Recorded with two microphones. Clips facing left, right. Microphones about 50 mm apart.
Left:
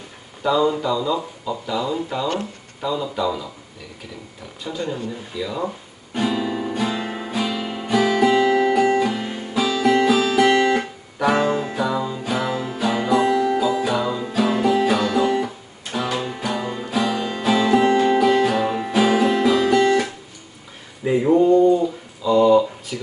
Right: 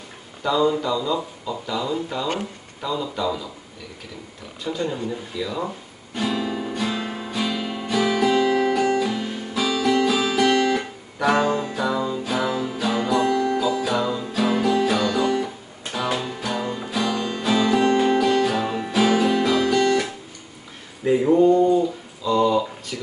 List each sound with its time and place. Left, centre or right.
0.4 s speech: centre
4.8 s speech: right
5.1 s speech: centre
6.1 s guitar: centre
9.1 s music: centre
10.2 s music: centre
11.1 s music: centre
18.9 s guitar: centre
21.0 s a sound: centre